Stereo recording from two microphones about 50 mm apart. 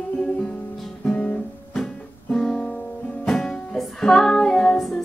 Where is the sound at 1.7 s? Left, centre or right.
Centre.